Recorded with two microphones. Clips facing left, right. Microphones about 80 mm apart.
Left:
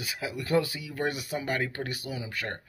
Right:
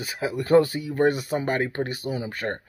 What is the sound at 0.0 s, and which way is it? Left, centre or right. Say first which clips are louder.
Speech: right 7 dB; right.